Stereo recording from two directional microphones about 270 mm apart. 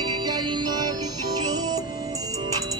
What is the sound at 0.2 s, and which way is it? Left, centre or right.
Music, centre.